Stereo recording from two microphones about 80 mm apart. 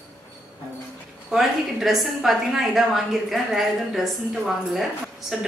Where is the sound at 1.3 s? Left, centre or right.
Centre.